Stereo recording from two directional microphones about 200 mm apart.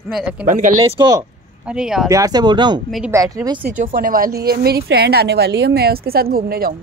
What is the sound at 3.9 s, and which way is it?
A woman's voice, 45° right (ahead or behind).